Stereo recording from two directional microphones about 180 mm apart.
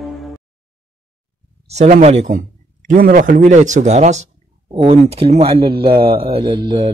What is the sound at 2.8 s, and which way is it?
Speech, 55° right (ahead or behind).